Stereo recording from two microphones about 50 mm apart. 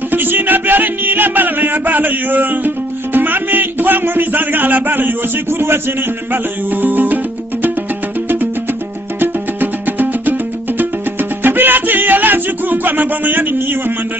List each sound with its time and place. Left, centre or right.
0.1 s music: right
9.2 s music: right